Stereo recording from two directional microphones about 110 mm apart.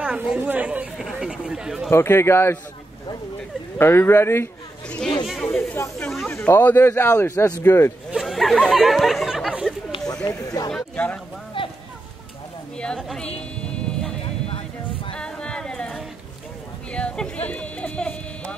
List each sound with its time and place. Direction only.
0.0 s speech: 10° right (ahead or behind)
1.9 s speech: 20° left (ahead or behind)
3.7 s speech: 20° left (ahead or behind)
4.8 s speech: 10° left (ahead or behind)
6.3 s speech: 20° left (ahead or behind)
8.1 s speech: centre (ahead or behind)
10.0 s a sound: 35° left (ahead or behind)
11.6 s a sound: 50° left (ahead or behind)
12.7 s a woman's voice: 5° left (ahead or behind)
13.7 s music: 5° left (ahead or behind)
14.2 s music: 55° left (ahead or behind)
15.1 s a sound: 10° left (ahead or behind)